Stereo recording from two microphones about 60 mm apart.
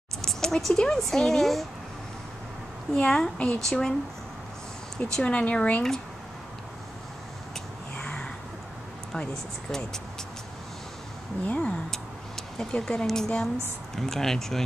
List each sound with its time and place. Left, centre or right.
0.2 s speech: centre
2.9 s speech: centre
4.9 s speech: centre
8.0 s a sound: centre
9.1 s speech: centre
11.4 s speech: left
11.9 s tick-tock: centre
13.9 s speech: centre